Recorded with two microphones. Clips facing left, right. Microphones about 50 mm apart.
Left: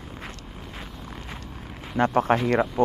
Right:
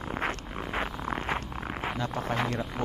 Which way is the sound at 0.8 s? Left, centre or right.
Right.